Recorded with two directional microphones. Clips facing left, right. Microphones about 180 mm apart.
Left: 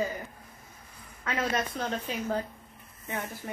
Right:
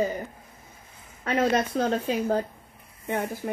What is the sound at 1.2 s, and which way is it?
Speech, 35° right (ahead or behind).